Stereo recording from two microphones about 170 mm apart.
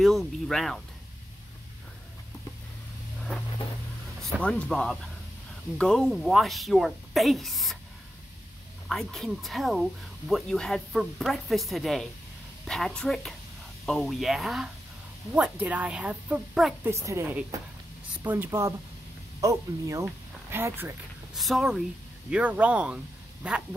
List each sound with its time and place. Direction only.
0.0 s speech: centre (ahead or behind)
4.2 s speech: 5° left (ahead or behind)
8.8 s a woman's voice: centre (ahead or behind)
16.8 s a woman's voice: 15° right (ahead or behind)
21.4 s a woman's voice: centre (ahead or behind)